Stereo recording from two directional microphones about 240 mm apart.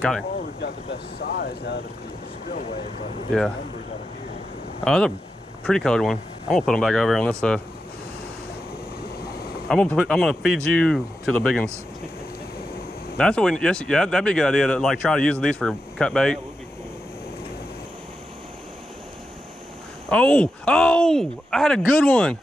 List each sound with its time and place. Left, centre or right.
0.6 s speech: left
4.8 s speech: centre
9.7 s speech: centre
13.2 s speech: centre
20.1 s speech: centre